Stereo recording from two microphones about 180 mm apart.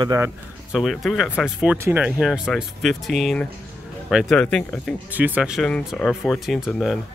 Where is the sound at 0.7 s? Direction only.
Centre (ahead or behind).